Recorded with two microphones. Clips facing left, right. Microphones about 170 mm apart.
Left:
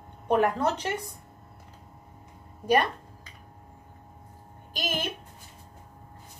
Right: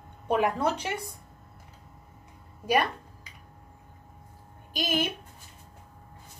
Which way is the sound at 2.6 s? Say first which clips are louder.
Left 2 dB; 10° right (ahead or behind).